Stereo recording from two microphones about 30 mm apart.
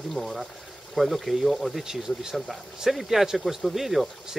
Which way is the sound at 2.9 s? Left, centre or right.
Centre.